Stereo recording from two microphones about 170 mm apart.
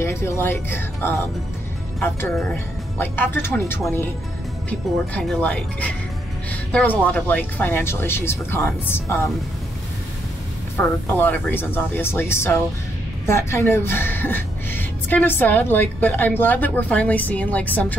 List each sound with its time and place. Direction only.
0.0 s a woman's voice: 15° left (ahead or behind)
10.8 s a woman's voice: 10° left (ahead or behind)